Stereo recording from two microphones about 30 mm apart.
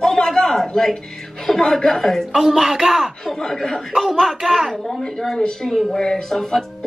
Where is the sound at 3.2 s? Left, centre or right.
Centre.